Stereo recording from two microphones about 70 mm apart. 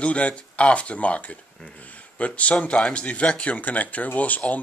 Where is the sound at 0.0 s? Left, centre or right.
Centre.